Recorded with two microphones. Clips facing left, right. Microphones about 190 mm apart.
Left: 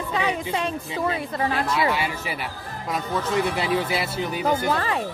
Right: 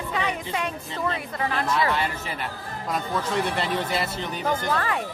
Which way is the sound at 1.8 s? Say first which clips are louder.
Left 1 dB; 5° left (ahead or behind).